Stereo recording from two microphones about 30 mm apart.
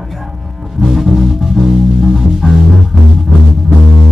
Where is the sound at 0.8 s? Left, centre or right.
Centre.